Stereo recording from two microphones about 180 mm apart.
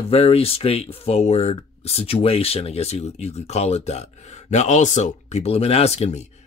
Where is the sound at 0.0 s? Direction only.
35° left (ahead or behind).